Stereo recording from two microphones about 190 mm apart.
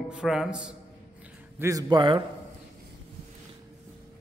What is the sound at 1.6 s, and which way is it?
Speech, 15° right (ahead or behind).